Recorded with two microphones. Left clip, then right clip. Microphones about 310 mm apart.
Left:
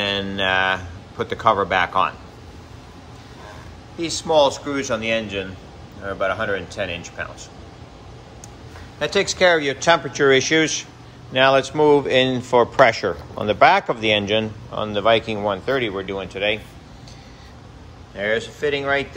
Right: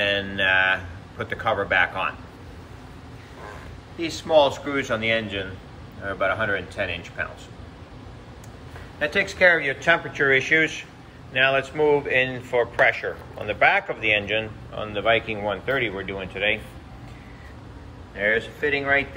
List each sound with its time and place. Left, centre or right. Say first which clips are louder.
0.0 s a sound: even; centre
4.2 s speech: left 2 dB; centre
9.0 s speech: left 2 dB; centre
18.1 s speech: even; centre